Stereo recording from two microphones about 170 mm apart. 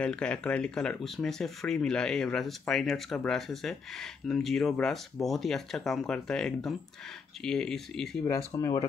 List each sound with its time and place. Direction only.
0.0 s speech: 5° left (ahead or behind)
8.3 s speech: 20° left (ahead or behind)